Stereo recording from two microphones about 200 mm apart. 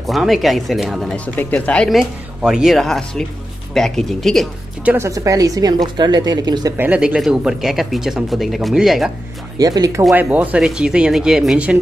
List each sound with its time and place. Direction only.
0.0 s speech: centre (ahead or behind)
4.9 s a woman's voice: 15° right (ahead or behind)
6.8 s speech: 5° right (ahead or behind)
9.6 s a woman's voice: 20° right (ahead or behind)
10.0 s speech: 5° right (ahead or behind)